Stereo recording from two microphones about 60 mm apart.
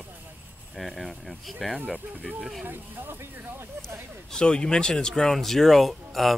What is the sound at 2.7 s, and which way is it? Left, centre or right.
Speech, right.